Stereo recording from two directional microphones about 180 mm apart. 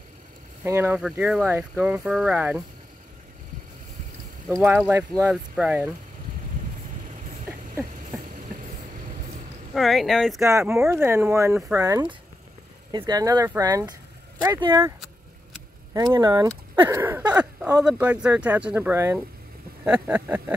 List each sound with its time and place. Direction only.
0.7 s speech: 15° right (ahead or behind)
4.5 s speech: 15° right (ahead or behind)
9.8 s speech: centre (ahead or behind)
10.4 s speech: 15° right (ahead or behind)
15.9 s speech: 20° right (ahead or behind)